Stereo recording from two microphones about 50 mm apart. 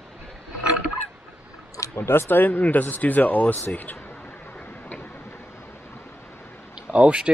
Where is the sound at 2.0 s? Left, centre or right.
Left.